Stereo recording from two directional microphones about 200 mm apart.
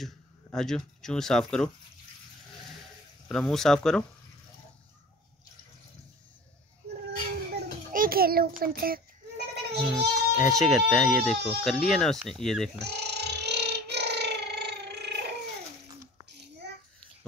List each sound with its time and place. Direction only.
0.0 s speech: centre (ahead or behind)
3.3 s speech: centre (ahead or behind)
7.9 s a child's voice: 45° right (ahead or behind)
9.9 s speech: centre (ahead or behind)
12.7 s a sound: 55° right (ahead or behind)